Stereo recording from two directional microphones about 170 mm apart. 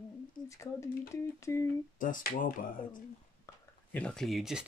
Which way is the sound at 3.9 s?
5° left (ahead or behind).